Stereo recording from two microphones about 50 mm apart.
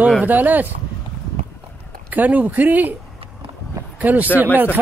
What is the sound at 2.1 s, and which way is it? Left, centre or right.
Speech, right.